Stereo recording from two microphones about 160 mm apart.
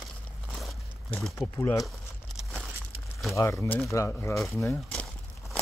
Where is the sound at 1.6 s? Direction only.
15° left (ahead or behind).